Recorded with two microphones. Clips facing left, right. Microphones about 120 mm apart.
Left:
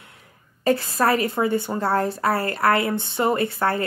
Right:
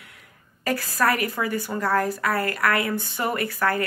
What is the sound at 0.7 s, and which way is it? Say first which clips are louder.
A woman's voice: left 3 dB; 25° left (ahead or behind).